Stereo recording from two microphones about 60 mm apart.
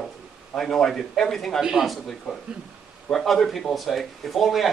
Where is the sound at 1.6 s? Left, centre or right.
Centre.